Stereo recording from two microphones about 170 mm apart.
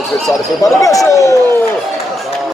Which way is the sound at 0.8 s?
20° left (ahead or behind).